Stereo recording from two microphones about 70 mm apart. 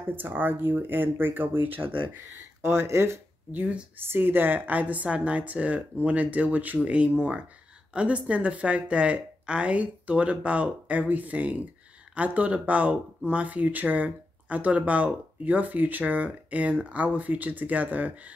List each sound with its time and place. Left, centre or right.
0.1 s speech: right
2.6 s speech: right
3.5 s speech: right
4.0 s speech: right